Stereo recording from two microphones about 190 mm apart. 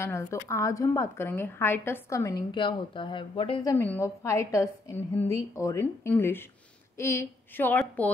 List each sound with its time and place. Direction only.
0.0 s a woman's voice: 15° left (ahead or behind)
3.7 s a woman's voice: 10° left (ahead or behind)